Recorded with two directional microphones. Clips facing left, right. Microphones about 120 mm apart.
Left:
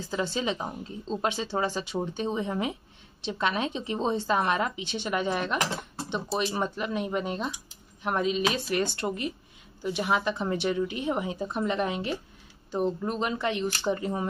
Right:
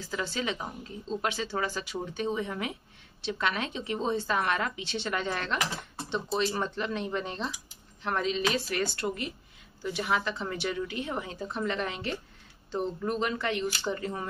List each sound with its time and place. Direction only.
0.1 s a woman's voice: 25° left (ahead or behind)